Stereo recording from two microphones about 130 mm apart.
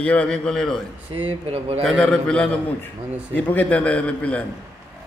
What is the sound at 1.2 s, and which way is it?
Speech, 45° right (ahead or behind).